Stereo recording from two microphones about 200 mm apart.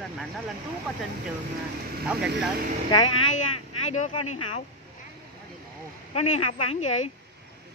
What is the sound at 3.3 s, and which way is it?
Speech, 35° left (ahead or behind).